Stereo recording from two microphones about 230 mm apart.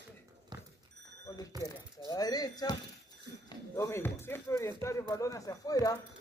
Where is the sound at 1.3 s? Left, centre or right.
Centre.